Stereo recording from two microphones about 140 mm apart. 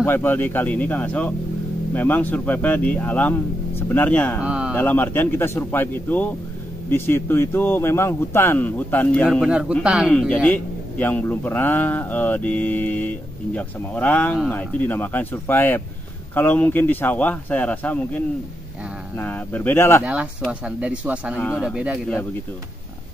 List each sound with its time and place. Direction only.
0.0 s a man's voice: 15° left (ahead or behind)
4.4 s a sound: 5° right (ahead or behind)
4.7 s a man's voice: 15° left (ahead or behind)
9.5 s speech: 5° right (ahead or behind)
10.1 s a man's voice: 10° left (ahead or behind)
20.6 s speech: 5° right (ahead or behind)